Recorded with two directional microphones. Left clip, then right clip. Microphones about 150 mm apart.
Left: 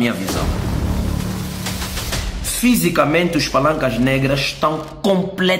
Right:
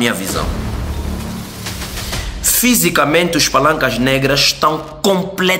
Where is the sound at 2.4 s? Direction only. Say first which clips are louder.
Right 4 dB; 15° left (ahead or behind).